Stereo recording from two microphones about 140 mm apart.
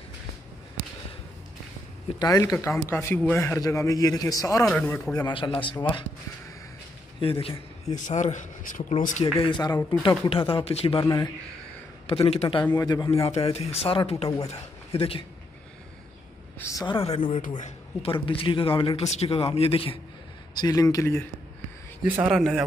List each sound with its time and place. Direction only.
2.1 s a man's voice: 25° left (ahead or behind)
7.2 s a man's voice: 40° left (ahead or behind)
7.9 s speech: 60° left (ahead or behind)
9.2 s a man's voice: 35° left (ahead or behind)
12.1 s a man's voice: 45° left (ahead or behind)
12.7 s a man's voice: 30° left (ahead or behind)
13.1 s speech: 45° left (ahead or behind)
16.5 s a sound: 20° left (ahead or behind)
16.8 s a man's voice: 35° left (ahead or behind)
17.1 s a man's voice: 45° left (ahead or behind)
20.5 s a man's voice: 25° left (ahead or behind)
22.0 s speech: 10° right (ahead or behind)